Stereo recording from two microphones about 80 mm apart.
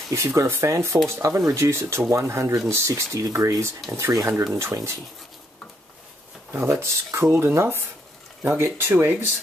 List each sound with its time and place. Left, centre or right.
0.1 s speech: right
6.7 s speech: right